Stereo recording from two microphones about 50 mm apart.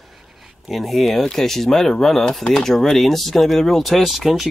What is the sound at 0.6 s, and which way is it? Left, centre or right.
Speech, centre.